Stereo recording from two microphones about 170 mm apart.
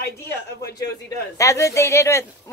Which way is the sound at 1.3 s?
20° left (ahead or behind).